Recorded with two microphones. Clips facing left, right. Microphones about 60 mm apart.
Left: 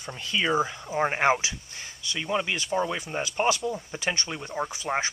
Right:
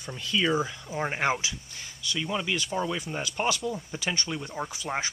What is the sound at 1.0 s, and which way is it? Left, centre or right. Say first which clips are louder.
Speech: left 4 dB; left.